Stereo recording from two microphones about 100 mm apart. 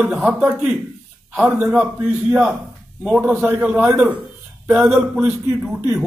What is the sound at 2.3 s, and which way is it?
A man's voice, 15° right (ahead or behind).